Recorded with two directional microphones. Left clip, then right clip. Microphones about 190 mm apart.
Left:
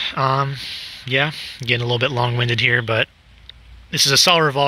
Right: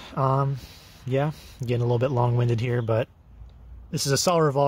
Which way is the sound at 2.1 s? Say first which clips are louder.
Left 5 dB; 5° right (ahead or behind).